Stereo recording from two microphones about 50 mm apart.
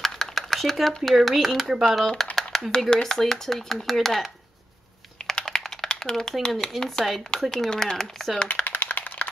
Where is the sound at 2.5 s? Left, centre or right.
Centre.